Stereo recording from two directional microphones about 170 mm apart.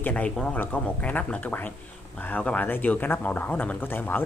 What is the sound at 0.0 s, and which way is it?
Speech, 10° left (ahead or behind).